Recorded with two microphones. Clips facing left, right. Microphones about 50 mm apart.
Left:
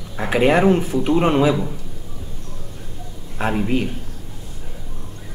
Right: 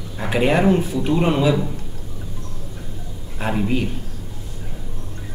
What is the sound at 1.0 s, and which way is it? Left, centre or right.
Speech, centre.